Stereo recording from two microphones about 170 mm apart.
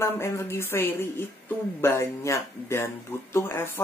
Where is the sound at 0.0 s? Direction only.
15° left (ahead or behind).